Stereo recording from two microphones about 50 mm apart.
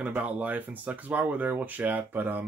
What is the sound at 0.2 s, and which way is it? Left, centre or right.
Speech, right.